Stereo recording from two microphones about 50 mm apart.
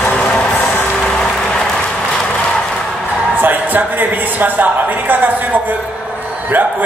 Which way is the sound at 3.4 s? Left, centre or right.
Right.